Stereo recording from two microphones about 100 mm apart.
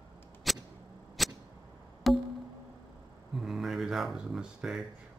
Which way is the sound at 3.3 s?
Centre (ahead or behind).